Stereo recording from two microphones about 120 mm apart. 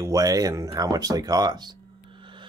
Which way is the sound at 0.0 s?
30° right (ahead or behind).